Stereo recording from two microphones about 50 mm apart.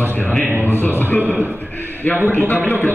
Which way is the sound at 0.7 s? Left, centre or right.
Left.